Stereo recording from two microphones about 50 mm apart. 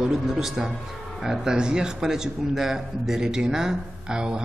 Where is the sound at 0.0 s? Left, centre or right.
Centre.